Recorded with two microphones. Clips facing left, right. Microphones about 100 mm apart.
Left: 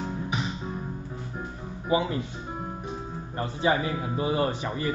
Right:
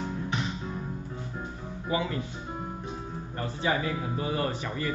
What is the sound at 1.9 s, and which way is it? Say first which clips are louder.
Speech: left 4 dB; 20° left (ahead or behind).